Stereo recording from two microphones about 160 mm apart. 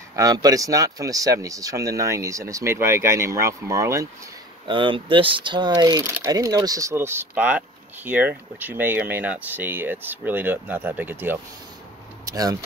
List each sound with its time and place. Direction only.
0.1 s speech: 20° right (ahead or behind)
4.6 s speech: 30° right (ahead or behind); by 11.3 s 10° right (ahead or behind)
12.3 s speech: 20° right (ahead or behind)